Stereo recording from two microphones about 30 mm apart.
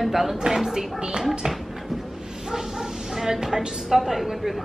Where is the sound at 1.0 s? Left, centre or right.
Right.